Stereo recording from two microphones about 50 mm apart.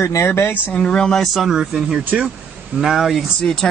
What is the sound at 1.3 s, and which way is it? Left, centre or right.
Speech, centre.